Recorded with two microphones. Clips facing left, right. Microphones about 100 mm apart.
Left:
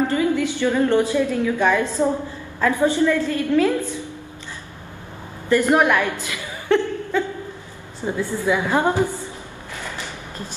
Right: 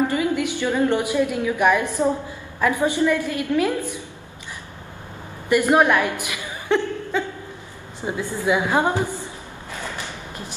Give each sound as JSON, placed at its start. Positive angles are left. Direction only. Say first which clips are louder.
{"t": 0.1, "sound": "a woman's voice", "louder": "left 2 dB", "side_deg": -20}
{"t": 5.5, "sound": "a woman's voice", "louder": "even", "side_deg": -15}